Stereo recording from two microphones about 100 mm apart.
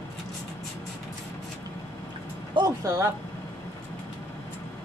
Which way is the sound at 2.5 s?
35° right (ahead or behind).